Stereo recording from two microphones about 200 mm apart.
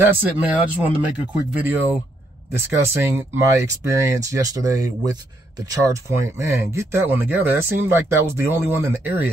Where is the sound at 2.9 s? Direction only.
10° right (ahead or behind).